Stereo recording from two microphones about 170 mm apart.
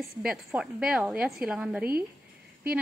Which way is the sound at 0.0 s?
5° right (ahead or behind).